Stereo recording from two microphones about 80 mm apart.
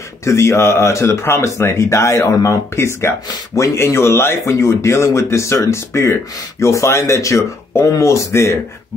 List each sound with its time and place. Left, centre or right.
0.2 s speech: left